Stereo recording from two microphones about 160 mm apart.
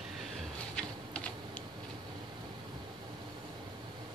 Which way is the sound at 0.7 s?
5° left (ahead or behind).